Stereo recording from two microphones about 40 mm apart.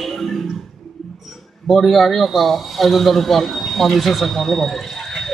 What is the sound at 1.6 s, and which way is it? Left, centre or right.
A man's voice, centre.